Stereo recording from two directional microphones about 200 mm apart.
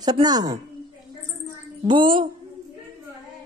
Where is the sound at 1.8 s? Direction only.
25° right (ahead or behind).